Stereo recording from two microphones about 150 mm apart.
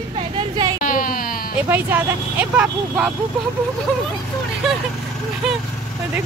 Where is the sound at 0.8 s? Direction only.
65° left (ahead or behind).